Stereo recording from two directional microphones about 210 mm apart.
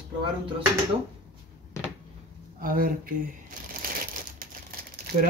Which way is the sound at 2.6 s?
40° right (ahead or behind).